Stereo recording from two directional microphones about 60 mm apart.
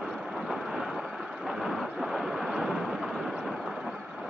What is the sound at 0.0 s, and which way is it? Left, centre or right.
Vehicle, centre.